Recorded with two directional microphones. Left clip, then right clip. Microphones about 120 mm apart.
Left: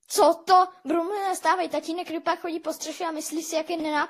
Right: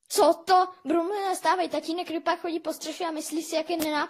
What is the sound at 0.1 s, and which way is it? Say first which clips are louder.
Speech: left 2 dB; 25° left (ahead or behind).